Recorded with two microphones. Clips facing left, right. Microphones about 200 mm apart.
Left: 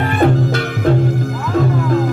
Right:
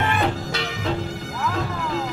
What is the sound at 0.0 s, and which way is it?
Music, 50° left (ahead or behind).